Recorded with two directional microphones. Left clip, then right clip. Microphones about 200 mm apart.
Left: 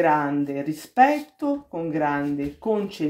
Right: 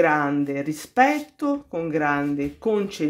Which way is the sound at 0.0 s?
25° right (ahead or behind).